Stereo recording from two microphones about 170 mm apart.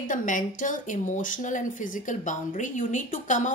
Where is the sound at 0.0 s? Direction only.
50° left (ahead or behind).